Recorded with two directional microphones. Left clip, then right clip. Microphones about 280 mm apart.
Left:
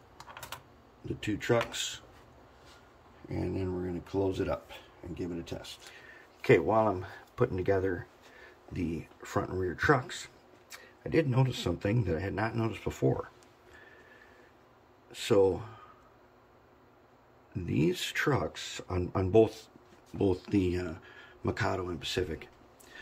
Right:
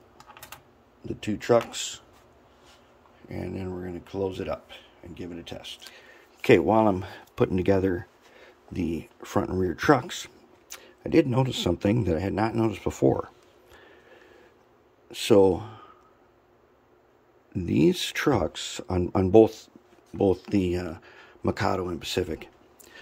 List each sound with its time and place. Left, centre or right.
1.0 s speech: centre
3.3 s speech: centre
5.9 s speech: right
15.0 s speech: right
17.6 s speech: right